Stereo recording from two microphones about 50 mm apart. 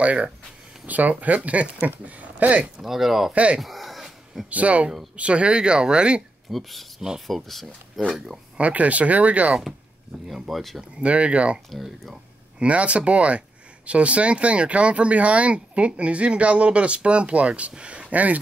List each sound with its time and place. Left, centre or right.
0.0 s speech: right
2.8 s speech: centre
3.3 s speech: right
3.6 s a sound: centre
4.5 s speech: right
6.5 s speech: centre
8.5 s speech: right
10.5 s speech: centre
11.0 s speech: right
11.7 s speech: centre
12.5 s speech: right